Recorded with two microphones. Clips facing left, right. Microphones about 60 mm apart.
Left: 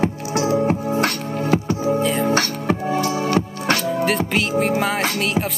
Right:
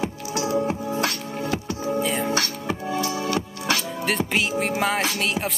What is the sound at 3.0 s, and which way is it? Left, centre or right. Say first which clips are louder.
Music: left 5 dB; left.